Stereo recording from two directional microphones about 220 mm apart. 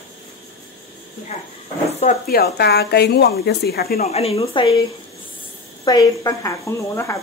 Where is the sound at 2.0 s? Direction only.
40° left (ahead or behind).